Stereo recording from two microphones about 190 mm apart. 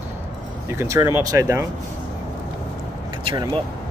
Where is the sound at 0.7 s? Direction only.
15° right (ahead or behind).